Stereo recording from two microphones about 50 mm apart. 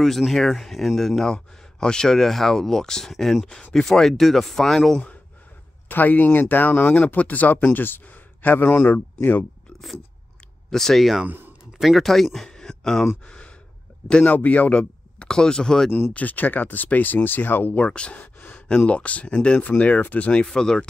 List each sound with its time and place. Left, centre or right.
0.0 s speech: centre
5.9 s speech: left
10.7 s speech: centre
12.4 s a sound: centre
13.3 s gasp: left
14.2 s speech: left
14.7 s speech: centre
16.1 s speech: left
17.7 s speech: left
19.8 s speech: left
20.4 s speech: centre